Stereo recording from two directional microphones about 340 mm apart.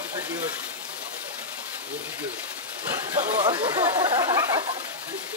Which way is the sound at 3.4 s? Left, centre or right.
Centre.